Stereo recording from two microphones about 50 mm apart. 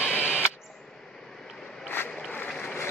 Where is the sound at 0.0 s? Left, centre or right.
Right.